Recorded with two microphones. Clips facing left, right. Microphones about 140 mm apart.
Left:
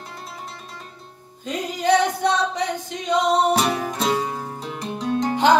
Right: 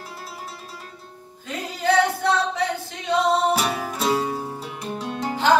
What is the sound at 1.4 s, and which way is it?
Singing, 20° left (ahead or behind).